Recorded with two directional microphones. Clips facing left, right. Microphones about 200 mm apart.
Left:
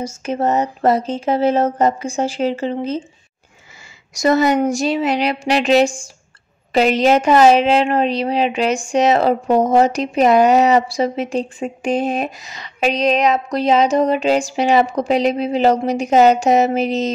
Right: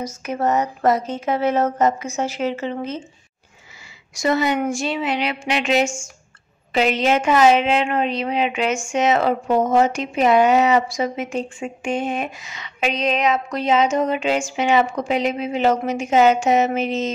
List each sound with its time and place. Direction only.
0.0 s a woman's voice: 30° left (ahead or behind)
4.1 s a woman's voice: 40° left (ahead or behind)